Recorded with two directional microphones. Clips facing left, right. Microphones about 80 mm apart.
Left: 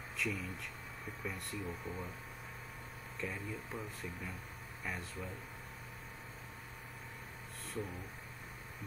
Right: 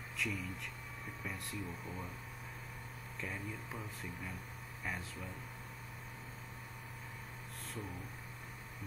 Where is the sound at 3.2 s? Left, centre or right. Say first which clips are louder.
Left 2 dB; centre.